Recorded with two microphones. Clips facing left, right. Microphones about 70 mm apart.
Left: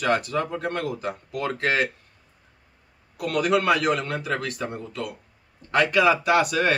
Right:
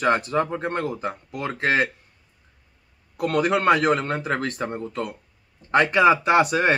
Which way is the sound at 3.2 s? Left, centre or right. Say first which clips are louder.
Right 2 dB; right.